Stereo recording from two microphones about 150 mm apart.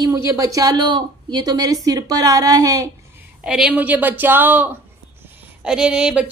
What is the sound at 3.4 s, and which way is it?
A woman's voice, 5° right (ahead or behind).